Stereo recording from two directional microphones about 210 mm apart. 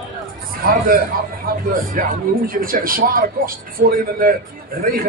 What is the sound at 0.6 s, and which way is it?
A man's voice, 45° right (ahead or behind).